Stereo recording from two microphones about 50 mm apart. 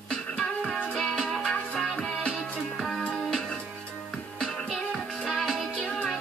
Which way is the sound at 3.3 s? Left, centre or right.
Centre.